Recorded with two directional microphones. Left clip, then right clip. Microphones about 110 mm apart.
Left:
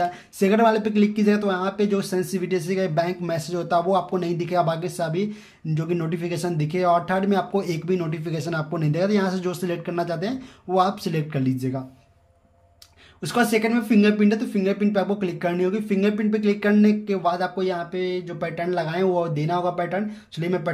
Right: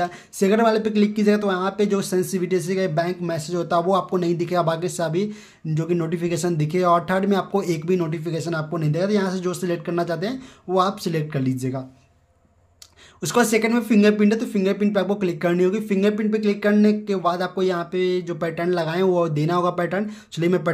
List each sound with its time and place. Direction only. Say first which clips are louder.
0.0 s speech: even; 25° right (ahead or behind)
8.3 s speech: right 2 dB; 15° right (ahead or behind); by 11.8 s 35° right (ahead or behind)
13.2 s speech: right 2 dB; 45° right (ahead or behind)
17.6 s speech: right 3 dB; 55° right (ahead or behind)